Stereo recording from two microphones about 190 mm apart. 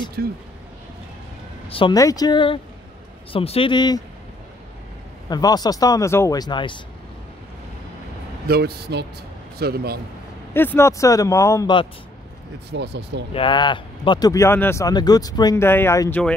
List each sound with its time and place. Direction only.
0.2 s speech: 60° right (ahead or behind)
1.7 s speech: 25° left (ahead or behind)
5.3 s speech: 20° left (ahead or behind)
8.5 s speech: 55° right (ahead or behind)
10.5 s speech: 10° left (ahead or behind)
12.7 s speech: 65° right (ahead or behind)
13.3 s speech: 25° left (ahead or behind); by 16.3 s 5° left (ahead or behind)